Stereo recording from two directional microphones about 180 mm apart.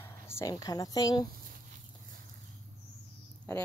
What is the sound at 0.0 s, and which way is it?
Speech, 15° left (ahead or behind).